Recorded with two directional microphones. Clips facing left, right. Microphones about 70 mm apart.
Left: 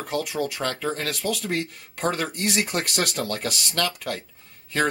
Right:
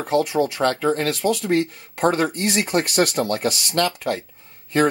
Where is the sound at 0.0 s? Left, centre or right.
Right.